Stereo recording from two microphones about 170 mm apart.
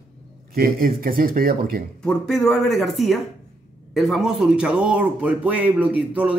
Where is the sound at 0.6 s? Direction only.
60° right (ahead or behind).